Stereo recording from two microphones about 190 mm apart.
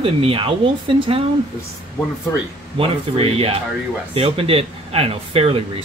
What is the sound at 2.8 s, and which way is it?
Speech, 30° right (ahead or behind).